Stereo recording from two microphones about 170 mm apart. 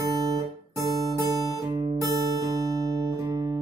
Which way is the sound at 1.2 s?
20° right (ahead or behind).